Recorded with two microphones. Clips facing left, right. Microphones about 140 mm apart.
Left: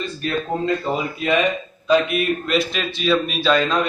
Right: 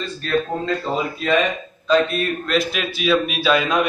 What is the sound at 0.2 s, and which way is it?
Speech, 15° left (ahead or behind).